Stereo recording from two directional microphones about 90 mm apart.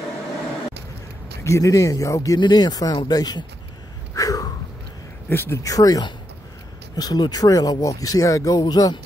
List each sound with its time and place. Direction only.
1.4 s speech: 35° left (ahead or behind)
4.1 s snort: 40° left (ahead or behind)
5.3 s speech: 25° left (ahead or behind)
5.6 s speech: 40° left (ahead or behind)